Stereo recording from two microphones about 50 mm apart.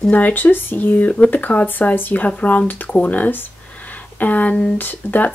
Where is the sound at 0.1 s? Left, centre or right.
Left.